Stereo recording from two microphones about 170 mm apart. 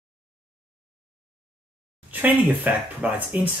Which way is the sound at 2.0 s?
10° right (ahead or behind).